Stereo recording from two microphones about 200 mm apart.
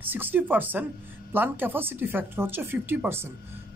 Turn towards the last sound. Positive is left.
turn(degrees=-10)  # may be behind; listen again after turning